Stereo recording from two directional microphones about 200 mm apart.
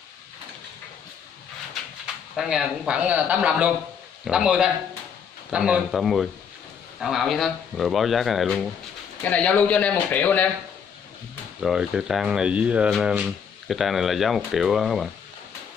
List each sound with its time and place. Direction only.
2.3 s speech: 5° right (ahead or behind)
11.6 s speech: 5° right (ahead or behind)